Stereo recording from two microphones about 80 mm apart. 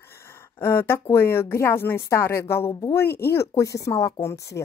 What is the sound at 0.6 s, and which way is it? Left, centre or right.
Speech, left.